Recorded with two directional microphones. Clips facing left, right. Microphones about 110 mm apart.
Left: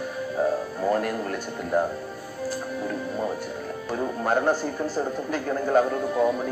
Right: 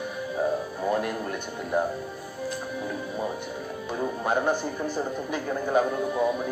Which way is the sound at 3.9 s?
10° right (ahead or behind).